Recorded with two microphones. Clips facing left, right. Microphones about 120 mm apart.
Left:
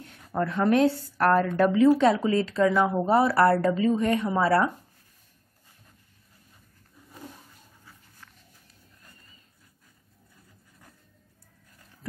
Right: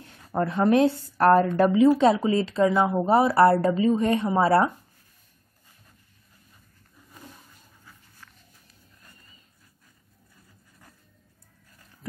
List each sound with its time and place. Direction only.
0.0 s a woman's voice: 25° right (ahead or behind)